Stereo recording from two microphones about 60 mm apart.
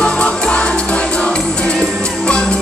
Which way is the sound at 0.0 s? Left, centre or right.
Centre.